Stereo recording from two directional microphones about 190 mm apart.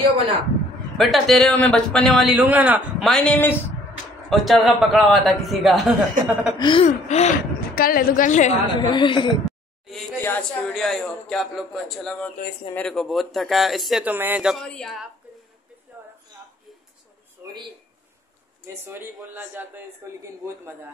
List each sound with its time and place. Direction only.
0.9 s a man's voice: centre (ahead or behind)
6.6 s speech: 30° left (ahead or behind)
7.7 s a woman's voice: 50° left (ahead or behind)
8.7 s a woman's voice: 25° left (ahead or behind)
10.2 s a man's voice: 10° left (ahead or behind)
18.7 s speech: 10° right (ahead or behind)